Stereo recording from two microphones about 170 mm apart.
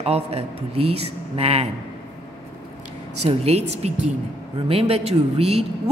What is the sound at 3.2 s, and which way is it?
Speech, 40° right (ahead or behind).